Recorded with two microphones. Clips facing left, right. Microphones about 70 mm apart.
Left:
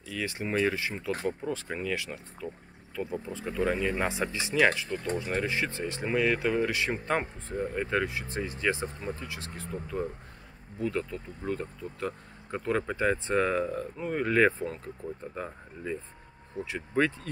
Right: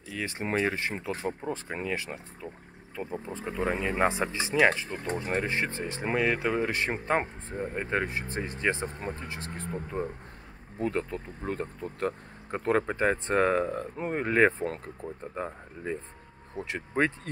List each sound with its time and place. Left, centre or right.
0.1 s speech: right
1.2 s speech: right
6.7 s speech: right